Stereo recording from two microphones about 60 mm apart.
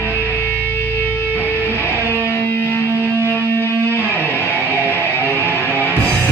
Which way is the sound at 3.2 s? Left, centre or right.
Left.